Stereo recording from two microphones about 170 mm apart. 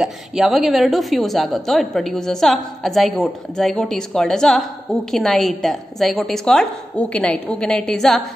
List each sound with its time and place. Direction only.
0.0 s a woman's voice: centre (ahead or behind)